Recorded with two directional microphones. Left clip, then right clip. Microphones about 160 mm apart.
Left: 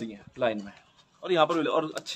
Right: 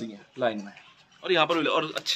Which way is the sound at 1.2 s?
90° left.